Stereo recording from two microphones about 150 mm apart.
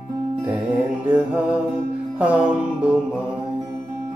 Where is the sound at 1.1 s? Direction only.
10° right (ahead or behind).